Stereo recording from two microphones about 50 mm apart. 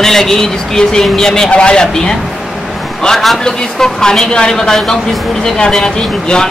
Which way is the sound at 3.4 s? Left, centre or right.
Centre.